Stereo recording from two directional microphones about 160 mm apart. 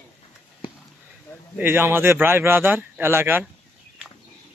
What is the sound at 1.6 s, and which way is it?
Speech, 15° right (ahead or behind).